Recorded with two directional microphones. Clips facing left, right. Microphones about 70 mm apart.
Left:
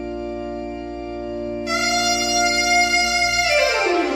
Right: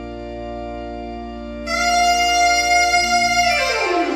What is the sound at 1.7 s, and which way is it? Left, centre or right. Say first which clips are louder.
Music: right 6 dB; right.